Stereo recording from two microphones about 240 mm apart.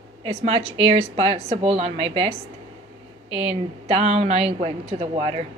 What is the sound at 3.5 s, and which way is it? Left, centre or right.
A woman's voice, right.